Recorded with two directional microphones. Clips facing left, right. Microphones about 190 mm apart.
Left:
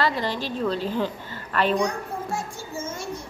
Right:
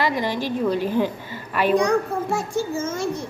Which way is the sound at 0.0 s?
15° right (ahead or behind).